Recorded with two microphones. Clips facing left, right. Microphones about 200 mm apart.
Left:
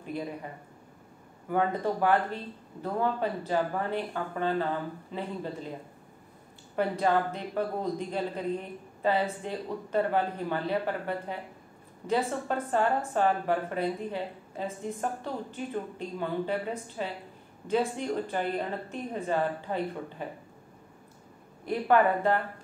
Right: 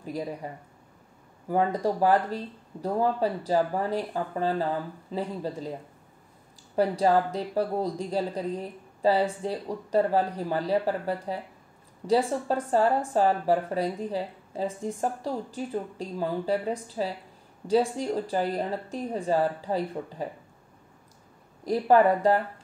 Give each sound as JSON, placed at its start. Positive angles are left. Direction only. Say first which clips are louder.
{"t": 0.0, "sound": "speech", "louder": "right 2 dB", "side_deg": -35}
{"t": 1.5, "sound": "speech", "louder": "right 3 dB", "side_deg": -35}
{"t": 6.7, "sound": "speech", "louder": "right 4 dB", "side_deg": -35}
{"t": 21.6, "sound": "speech", "louder": "right 4 dB", "side_deg": -35}